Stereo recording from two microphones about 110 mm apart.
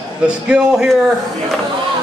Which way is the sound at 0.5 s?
5° right (ahead or behind).